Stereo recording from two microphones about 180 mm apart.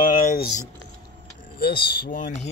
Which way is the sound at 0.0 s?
50° left (ahead or behind).